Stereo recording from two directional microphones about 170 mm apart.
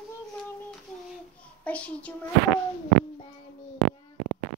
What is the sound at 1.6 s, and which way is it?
Speech, 10° left (ahead or behind).